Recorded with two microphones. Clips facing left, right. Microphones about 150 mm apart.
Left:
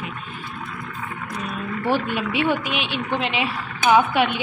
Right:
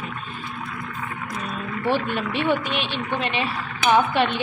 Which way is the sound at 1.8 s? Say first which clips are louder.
Even; 10° left (ahead or behind).